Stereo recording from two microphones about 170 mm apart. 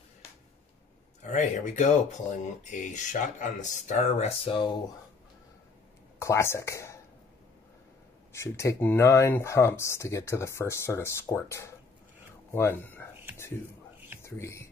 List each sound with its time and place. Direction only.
1.3 s speech: 45° left (ahead or behind)
4.5 s speech: 30° left (ahead or behind)
6.1 s speech: 15° left (ahead or behind)
8.3 s speech: 15° left (ahead or behind)
14.2 s speech: 15° left (ahead or behind)